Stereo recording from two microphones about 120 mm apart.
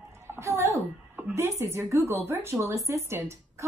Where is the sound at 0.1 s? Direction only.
20° right (ahead or behind).